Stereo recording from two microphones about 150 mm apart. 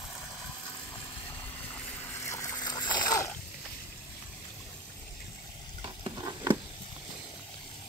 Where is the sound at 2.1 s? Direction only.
20° left (ahead or behind).